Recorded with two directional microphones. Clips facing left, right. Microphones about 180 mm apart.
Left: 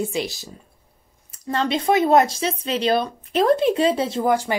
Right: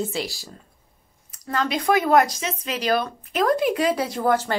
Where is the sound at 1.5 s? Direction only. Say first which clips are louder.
Left 2 dB; 30° left (ahead or behind).